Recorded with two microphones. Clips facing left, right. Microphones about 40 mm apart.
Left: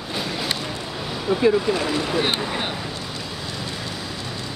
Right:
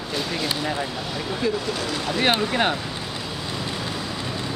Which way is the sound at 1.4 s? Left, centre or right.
Left.